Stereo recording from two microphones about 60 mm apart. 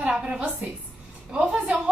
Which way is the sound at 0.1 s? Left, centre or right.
Centre.